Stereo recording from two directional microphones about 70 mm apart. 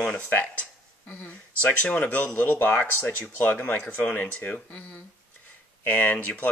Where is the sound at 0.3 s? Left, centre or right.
Left.